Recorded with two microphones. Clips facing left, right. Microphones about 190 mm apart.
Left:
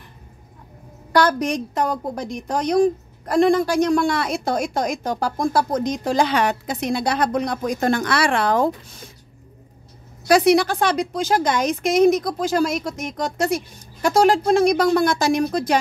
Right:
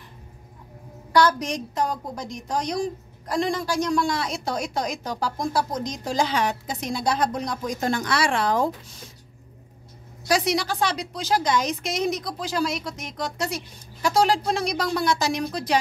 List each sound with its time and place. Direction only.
1.1 s a woman's voice: 60° left (ahead or behind)
10.2 s a woman's voice: 55° left (ahead or behind)